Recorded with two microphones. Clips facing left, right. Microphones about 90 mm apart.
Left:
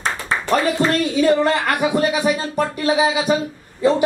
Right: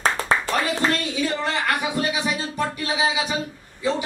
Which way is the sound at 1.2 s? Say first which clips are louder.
Left 8 dB; 45° left (ahead or behind).